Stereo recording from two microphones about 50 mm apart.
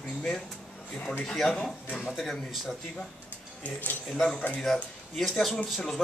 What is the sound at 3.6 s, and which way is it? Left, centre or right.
Speech, left.